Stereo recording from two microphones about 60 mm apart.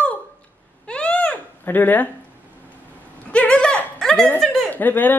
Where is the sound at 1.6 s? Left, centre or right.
Left.